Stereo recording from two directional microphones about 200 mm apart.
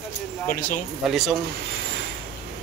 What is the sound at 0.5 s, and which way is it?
Speech, 40° left (ahead or behind).